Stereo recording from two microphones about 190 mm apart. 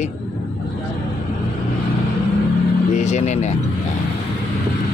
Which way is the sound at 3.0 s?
40° left (ahead or behind).